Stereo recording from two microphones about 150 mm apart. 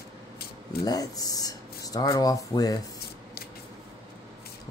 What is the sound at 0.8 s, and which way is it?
Speech, 25° left (ahead or behind).